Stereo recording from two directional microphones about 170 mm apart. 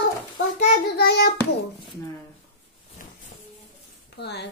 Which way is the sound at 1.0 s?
75° left (ahead or behind).